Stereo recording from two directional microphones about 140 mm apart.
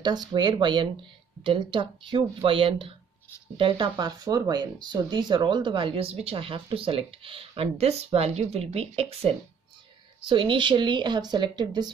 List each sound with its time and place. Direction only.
0.3 s speech: 35° right (ahead or behind)
10.2 s speech: 35° right (ahead or behind)